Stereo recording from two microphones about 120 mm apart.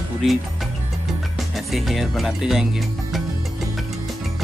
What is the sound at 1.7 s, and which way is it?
Speech, centre (ahead or behind).